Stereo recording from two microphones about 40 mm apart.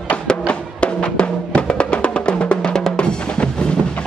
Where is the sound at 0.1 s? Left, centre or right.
Left.